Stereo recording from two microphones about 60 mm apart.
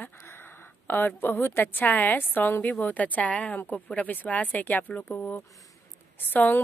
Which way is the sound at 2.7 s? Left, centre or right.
Left.